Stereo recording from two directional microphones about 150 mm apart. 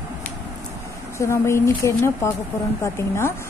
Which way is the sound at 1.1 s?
20° left (ahead or behind).